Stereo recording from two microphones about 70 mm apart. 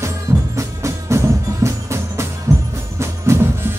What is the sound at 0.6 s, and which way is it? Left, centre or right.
Music, right.